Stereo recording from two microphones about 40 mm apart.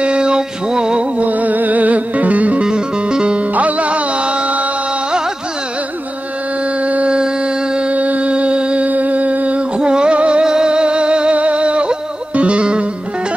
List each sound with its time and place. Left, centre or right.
0.0 s mantra: right
1.1 s music: right
2.6 s music: right
3.5 s music: right
6.8 s a sound: right
7.9 s music: right
8.8 s music: right
9.8 s music: right